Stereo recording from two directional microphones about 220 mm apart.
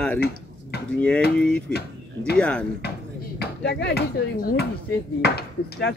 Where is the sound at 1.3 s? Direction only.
5° left (ahead or behind).